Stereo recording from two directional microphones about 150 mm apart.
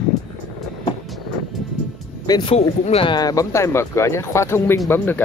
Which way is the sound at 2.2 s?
30° left (ahead or behind).